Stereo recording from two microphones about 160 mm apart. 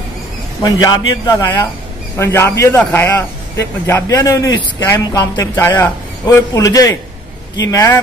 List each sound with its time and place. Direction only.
0.6 s a man's voice: 25° left (ahead or behind)